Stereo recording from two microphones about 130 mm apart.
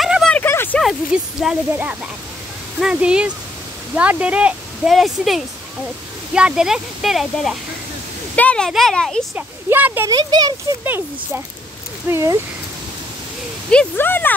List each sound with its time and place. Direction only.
0.0 s a sound: centre (ahead or behind)
0.4 s a sound: 15° left (ahead or behind)
1.1 s speech: 5° right (ahead or behind)
9.3 s speech: 15° right (ahead or behind)
10.0 s a child's voice: 30° right (ahead or behind)
10.8 s a child's voice: 15° right (ahead or behind)
13.7 s speech: 10° left (ahead or behind)